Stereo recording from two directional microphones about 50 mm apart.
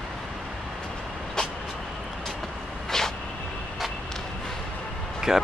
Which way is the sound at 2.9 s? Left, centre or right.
Centre.